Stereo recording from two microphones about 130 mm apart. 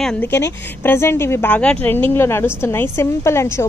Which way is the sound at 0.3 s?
20° left (ahead or behind).